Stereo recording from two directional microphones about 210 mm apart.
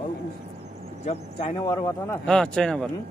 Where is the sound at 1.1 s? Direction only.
30° left (ahead or behind).